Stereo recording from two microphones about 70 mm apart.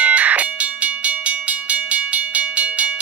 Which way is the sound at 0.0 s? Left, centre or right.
Right.